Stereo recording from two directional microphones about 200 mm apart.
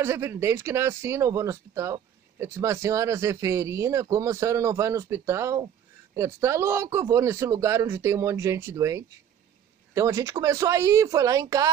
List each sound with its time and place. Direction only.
0.0 s speech: 15° right (ahead or behind)